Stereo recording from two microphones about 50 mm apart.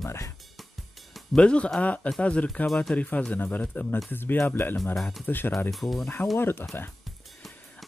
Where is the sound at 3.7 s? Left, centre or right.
Left.